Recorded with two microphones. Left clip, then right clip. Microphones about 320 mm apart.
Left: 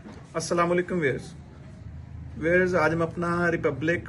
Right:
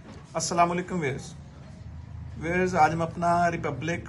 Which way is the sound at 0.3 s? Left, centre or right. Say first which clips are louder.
Even; centre.